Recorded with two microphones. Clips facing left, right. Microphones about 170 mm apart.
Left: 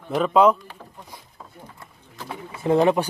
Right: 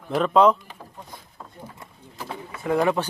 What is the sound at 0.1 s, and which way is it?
Speech, 5° left (ahead or behind).